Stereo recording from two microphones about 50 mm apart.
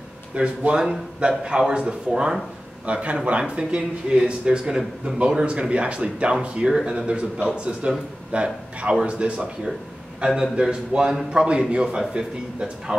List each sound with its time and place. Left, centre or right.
0.3 s speech: right
10.2 s speech: centre